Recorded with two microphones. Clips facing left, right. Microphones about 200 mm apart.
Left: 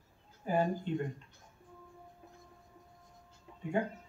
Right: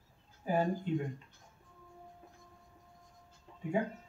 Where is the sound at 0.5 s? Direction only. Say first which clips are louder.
Even; centre (ahead or behind).